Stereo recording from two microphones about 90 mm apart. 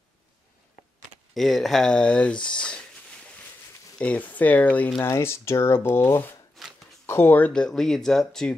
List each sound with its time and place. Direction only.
1.3 s speech: centre (ahead or behind)
4.0 s speech: 15° left (ahead or behind)
5.0 s speech: 30° left (ahead or behind)
6.6 s a sound: centre (ahead or behind)
7.1 s speech: 25° left (ahead or behind); by 8.5 s 5° left (ahead or behind)